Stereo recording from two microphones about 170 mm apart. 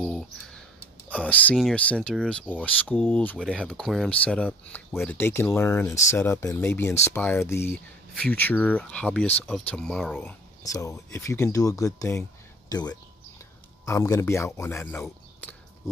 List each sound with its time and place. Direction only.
1.0 s speech: 10° left (ahead or behind)
10.1 s speech: 15° left (ahead or behind)